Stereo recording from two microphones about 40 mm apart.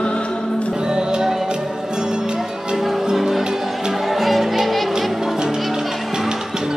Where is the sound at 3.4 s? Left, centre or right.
Centre.